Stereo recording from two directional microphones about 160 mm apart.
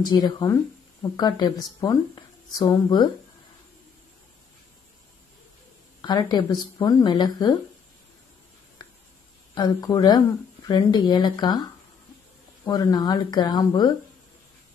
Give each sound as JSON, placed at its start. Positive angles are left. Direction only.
{"t": 0.0, "sound": "speech", "side_deg": 25}
{"t": 5.9, "sound": "speech", "side_deg": 25}
{"t": 9.6, "sound": "speech", "side_deg": 25}